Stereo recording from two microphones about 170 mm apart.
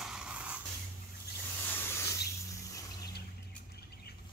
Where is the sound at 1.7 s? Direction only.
15° left (ahead or behind).